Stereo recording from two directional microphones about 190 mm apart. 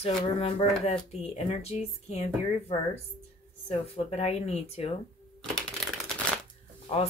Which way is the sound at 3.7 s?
35° left (ahead or behind).